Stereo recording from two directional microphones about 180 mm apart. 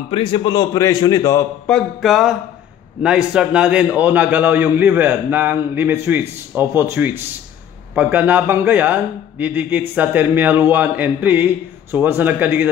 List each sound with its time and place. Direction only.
0.1 s a man's voice: 30° left (ahead or behind)
1.7 s music: centre (ahead or behind)
3.0 s a man's voice: 5° right (ahead or behind)